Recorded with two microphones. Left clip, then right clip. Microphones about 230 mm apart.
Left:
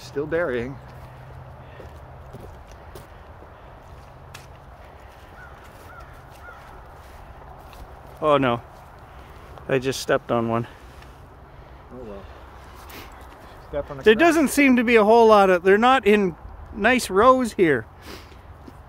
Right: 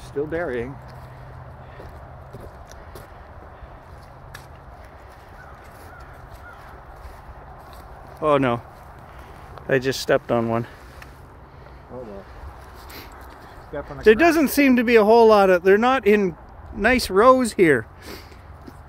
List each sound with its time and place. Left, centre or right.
0.1 s speech: left
8.2 s speech: centre
9.7 s speech: centre
14.0 s speech: centre